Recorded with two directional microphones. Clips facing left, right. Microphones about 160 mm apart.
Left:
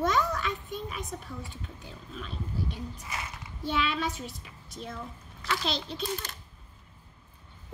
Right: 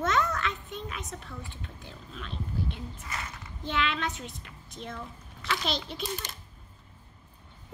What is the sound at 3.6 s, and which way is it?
Speech, 5° left (ahead or behind).